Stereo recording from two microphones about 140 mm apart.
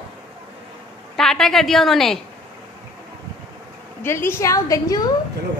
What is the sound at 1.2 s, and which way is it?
A woman's voice, 5° left (ahead or behind).